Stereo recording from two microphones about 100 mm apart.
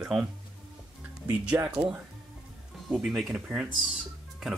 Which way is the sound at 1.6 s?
25° right (ahead or behind).